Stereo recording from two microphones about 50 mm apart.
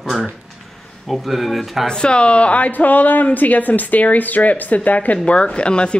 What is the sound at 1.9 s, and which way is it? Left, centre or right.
Speech, centre.